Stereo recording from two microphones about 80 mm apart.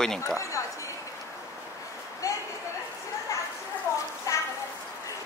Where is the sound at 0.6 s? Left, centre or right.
Left.